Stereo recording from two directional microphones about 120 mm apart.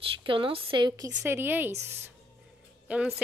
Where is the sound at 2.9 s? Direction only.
15° right (ahead or behind).